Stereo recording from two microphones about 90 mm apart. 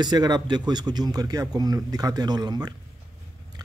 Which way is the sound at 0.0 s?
50° right (ahead or behind).